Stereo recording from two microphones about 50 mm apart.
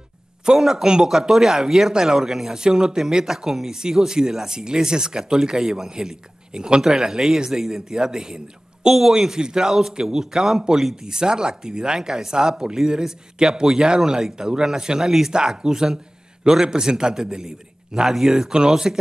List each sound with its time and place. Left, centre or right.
0.5 s speech: centre